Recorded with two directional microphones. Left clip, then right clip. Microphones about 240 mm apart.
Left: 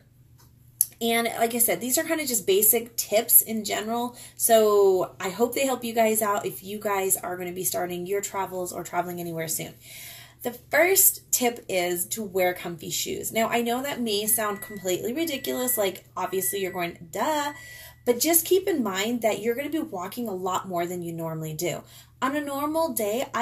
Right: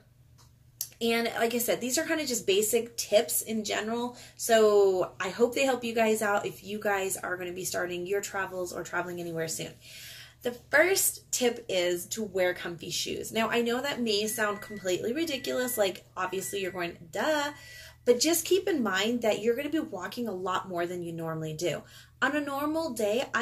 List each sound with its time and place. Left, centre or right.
0.7 s speech: centre